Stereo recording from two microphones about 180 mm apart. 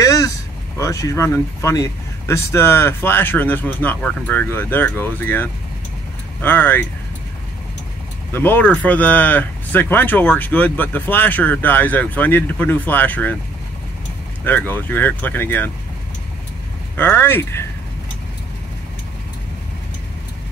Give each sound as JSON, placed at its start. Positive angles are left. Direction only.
{"t": 0.0, "sound": "a sound", "side_deg": 20}
{"t": 0.7, "sound": "speech", "side_deg": 20}
{"t": 8.3, "sound": "speech", "side_deg": 10}
{"t": 14.4, "sound": "speech", "side_deg": 10}
{"t": 16.9, "sound": "speech", "side_deg": 10}